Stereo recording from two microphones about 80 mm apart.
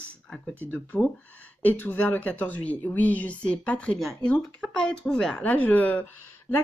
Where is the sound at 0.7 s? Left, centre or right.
Centre.